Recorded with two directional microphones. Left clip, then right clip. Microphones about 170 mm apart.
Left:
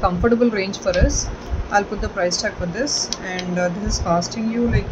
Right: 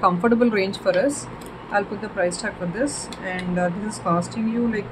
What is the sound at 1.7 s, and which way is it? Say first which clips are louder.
Speech: left 4 dB; 5° left (ahead or behind).